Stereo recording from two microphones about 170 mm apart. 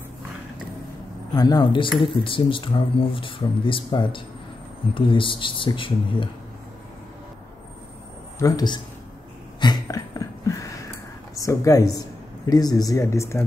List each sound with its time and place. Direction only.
1.3 s a woman's voice: 25° left (ahead or behind)
8.4 s a woman's voice: 20° left (ahead or behind)
9.6 s a sound: 25° left (ahead or behind)
11.3 s a woman's voice: 20° left (ahead or behind)